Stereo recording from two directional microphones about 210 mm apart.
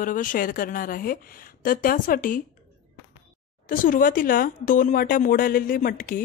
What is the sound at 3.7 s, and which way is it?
Speech, 40° left (ahead or behind).